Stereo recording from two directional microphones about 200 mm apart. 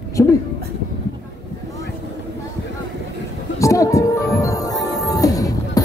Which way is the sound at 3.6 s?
15° left (ahead or behind).